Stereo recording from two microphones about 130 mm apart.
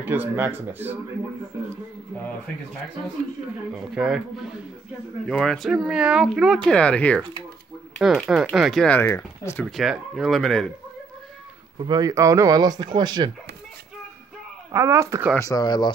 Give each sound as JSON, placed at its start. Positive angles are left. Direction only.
{"t": 0.0, "sound": "speech", "side_deg": -15}
{"t": 3.7, "sound": "speech", "side_deg": -5}
{"t": 8.8, "sound": "speech", "side_deg": 15}
{"t": 9.7, "sound": "speech", "side_deg": 0}
{"t": 11.8, "sound": "speech", "side_deg": -30}
{"t": 14.7, "sound": "speech", "side_deg": -20}
{"t": 15.3, "sound": "speech", "side_deg": 25}